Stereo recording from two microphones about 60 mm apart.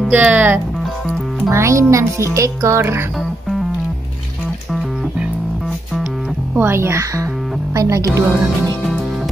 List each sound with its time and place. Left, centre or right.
0.1 s speech: right
1.5 s a child's voice: right
6.5 s a child's voice: right
7.7 s speech: right